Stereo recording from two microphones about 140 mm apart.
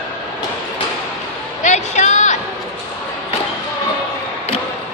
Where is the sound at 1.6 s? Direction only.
60° left (ahead or behind).